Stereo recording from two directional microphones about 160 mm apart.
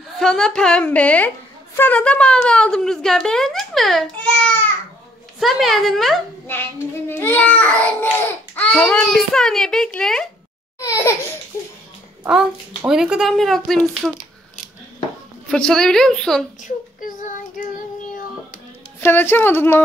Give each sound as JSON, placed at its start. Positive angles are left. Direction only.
{"t": 0.2, "sound": "speech", "side_deg": 5}
{"t": 7.1, "sound": "a child's voice", "side_deg": 15}
{"t": 10.8, "sound": "a sound", "side_deg": 20}
{"t": 11.5, "sound": "a child's voice", "side_deg": 15}
{"t": 12.2, "sound": "speech", "side_deg": -5}
{"t": 15.5, "sound": "speech", "side_deg": 5}
{"t": 16.6, "sound": "child singing", "side_deg": 55}
{"t": 18.9, "sound": "a child's voice", "side_deg": 15}